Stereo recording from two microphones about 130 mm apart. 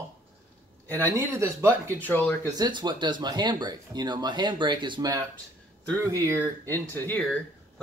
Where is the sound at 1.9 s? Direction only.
15° left (ahead or behind).